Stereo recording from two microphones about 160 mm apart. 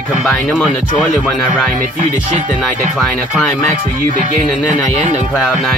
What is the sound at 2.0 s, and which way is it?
Speech, 45° right (ahead or behind).